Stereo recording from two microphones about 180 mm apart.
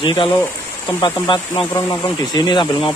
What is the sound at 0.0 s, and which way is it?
Speech, 25° left (ahead or behind).